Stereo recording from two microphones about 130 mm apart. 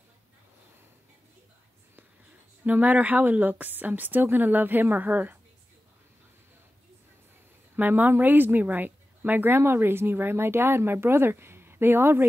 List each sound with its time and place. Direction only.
2.6 s a woman's voice: 10° right (ahead or behind)
7.7 s a woman's voice: 15° right (ahead or behind)